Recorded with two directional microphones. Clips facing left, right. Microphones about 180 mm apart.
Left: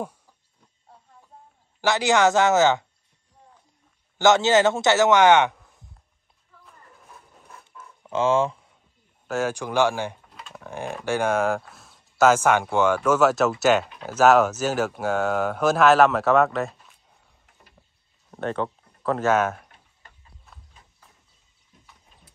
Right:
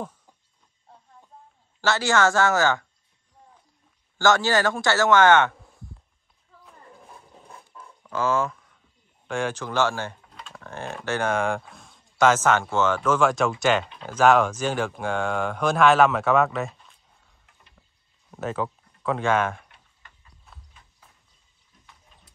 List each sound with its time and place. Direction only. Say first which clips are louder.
1.8 s speech: left 2 dB; 15° left (ahead or behind)
4.2 s a man's voice: left 3 dB; 20° left (ahead or behind)
7.1 s a sound: right 2 dB; 30° right (ahead or behind)
8.0 s a sound: left 3 dB; 25° left (ahead or behind)
9.3 s speech: left 2 dB; 10° left (ahead or behind)
10.3 s typing: left 2 dB; 5° left (ahead or behind)
11.0 s speech: left 2 dB; 10° left (ahead or behind)
18.3 s speech: left 1 dB; 5° right (ahead or behind)